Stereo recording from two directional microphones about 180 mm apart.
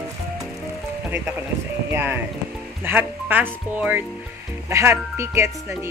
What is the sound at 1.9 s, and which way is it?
Speech, 15° right (ahead or behind).